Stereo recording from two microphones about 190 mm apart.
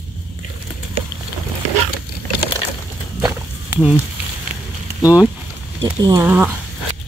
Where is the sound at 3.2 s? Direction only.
Centre (ahead or behind).